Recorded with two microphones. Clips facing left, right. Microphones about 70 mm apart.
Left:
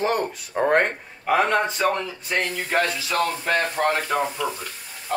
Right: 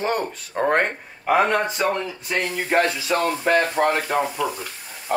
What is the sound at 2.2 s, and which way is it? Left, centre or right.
Speech, right.